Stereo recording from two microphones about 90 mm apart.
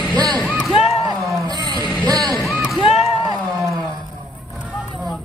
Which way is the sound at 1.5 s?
50° right (ahead or behind).